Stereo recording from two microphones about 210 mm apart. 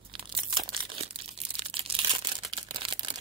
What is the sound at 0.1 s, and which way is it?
Crumpling, 25° right (ahead or behind).